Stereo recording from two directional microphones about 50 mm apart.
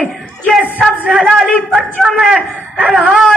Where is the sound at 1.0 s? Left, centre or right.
Centre.